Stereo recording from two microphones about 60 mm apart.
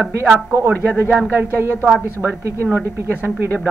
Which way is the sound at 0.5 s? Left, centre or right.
Right.